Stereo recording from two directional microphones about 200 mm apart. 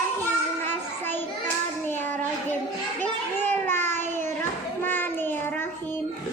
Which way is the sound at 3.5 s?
10° left (ahead or behind).